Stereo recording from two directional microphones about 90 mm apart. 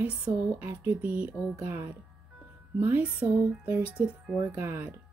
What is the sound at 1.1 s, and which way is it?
Speech, 15° right (ahead or behind).